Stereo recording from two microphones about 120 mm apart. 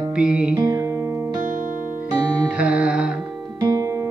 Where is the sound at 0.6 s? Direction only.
25° right (ahead or behind).